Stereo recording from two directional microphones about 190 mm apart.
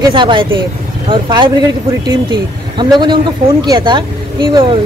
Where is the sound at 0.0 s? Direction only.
25° right (ahead or behind).